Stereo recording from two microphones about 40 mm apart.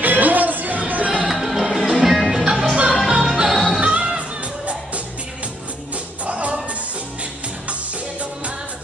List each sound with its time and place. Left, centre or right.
0.0 s music: right
1.2 s music: centre
2.7 s music: right
3.1 s music: centre
3.8 s music: right
6.2 s music: right